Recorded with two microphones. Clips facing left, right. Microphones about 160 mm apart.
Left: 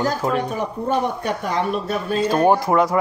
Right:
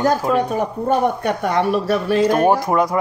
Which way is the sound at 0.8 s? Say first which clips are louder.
Right 4 dB; 55° right (ahead or behind).